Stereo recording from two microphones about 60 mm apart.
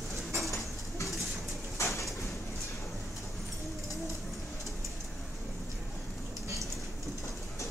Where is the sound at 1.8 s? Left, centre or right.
Left.